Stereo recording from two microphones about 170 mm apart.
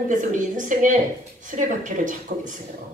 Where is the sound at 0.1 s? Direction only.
50° right (ahead or behind).